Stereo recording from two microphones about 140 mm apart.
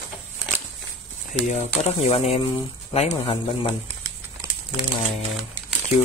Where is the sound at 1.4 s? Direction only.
50° left (ahead or behind).